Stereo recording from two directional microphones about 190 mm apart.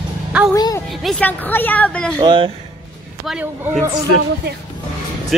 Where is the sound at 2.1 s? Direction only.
25° right (ahead or behind).